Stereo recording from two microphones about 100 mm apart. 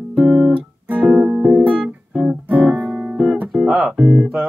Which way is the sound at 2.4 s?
15° right (ahead or behind).